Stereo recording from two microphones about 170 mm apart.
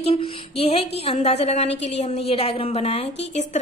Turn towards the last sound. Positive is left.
turn(degrees=40)  # may be behind; listen again after turning